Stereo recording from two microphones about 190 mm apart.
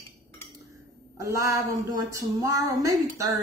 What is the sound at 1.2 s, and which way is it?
A woman's voice, 15° right (ahead or behind).